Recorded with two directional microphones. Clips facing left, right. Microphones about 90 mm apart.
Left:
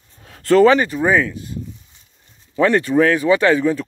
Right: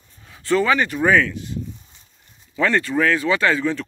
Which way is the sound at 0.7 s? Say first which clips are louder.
Left 6 dB; 30° left (ahead or behind).